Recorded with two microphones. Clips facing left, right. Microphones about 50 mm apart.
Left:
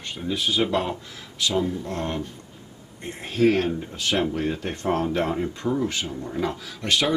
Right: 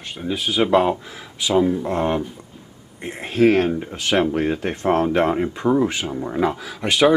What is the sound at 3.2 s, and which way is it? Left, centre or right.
Speech, right.